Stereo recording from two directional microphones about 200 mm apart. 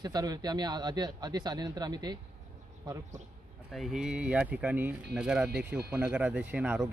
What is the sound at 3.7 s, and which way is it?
Speech, centre (ahead or behind).